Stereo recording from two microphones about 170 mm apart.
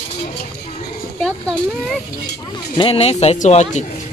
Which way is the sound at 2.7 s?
35° left (ahead or behind).